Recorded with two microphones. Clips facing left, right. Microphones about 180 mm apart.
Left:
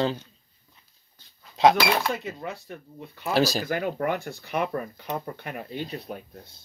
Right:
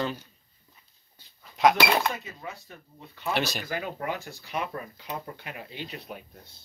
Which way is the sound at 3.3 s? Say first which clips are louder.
Left 6 dB; 35° left (ahead or behind).